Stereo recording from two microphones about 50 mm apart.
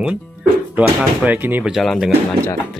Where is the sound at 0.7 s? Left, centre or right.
Right.